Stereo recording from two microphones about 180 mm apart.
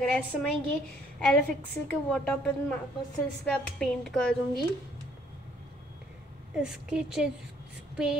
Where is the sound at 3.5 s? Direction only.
5° left (ahead or behind).